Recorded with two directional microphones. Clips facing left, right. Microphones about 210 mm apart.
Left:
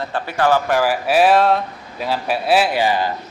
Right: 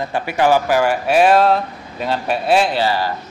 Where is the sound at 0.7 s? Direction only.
Centre (ahead or behind).